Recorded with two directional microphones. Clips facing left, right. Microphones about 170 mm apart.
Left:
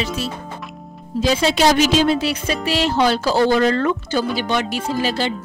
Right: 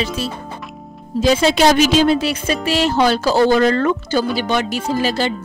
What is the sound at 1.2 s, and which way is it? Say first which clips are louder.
Speech: right 3 dB; 50° right (ahead or behind).